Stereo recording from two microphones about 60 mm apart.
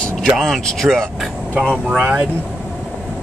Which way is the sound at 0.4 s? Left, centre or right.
Centre.